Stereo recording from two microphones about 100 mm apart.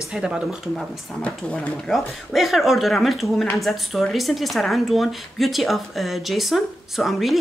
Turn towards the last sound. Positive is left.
turn(degrees=0)  # may be behind; listen again after turning